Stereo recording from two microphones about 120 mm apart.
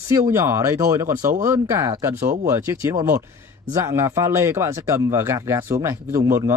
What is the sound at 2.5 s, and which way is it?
Speech, 20° right (ahead or behind).